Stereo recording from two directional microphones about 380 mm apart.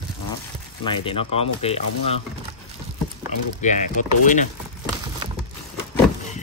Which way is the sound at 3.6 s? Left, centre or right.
Centre.